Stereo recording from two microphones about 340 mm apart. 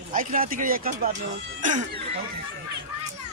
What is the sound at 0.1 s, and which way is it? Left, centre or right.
Speech, right.